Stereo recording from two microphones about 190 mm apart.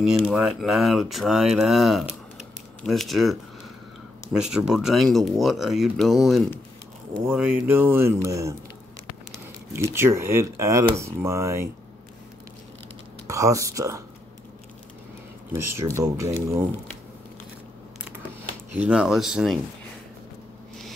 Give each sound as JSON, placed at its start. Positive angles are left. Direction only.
{"t": 0.0, "sound": "speech", "side_deg": -5}
{"t": 9.7, "sound": "speech", "side_deg": -15}
{"t": 13.3, "sound": "speech", "side_deg": -15}
{"t": 15.5, "sound": "speech", "side_deg": -15}
{"t": 18.9, "sound": "speech", "side_deg": -5}